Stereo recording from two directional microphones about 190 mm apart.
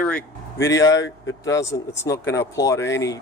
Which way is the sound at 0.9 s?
75° left (ahead or behind).